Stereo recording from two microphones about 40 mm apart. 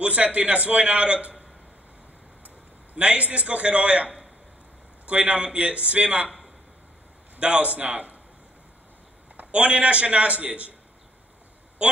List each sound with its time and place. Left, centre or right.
0.0 s a man's voice: right
2.4 s a sound: right
3.3 s a man's voice: right
7.3 s a man's voice: right
9.4 s a man's voice: right
11.8 s a man's voice: right